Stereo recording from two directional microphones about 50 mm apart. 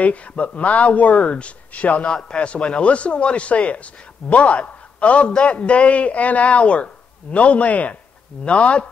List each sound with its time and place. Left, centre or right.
0.0 s speech: left